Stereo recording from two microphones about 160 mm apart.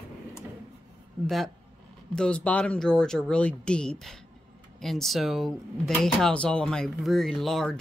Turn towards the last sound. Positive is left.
turn(degrees=0)  # may be behind; listen again after turning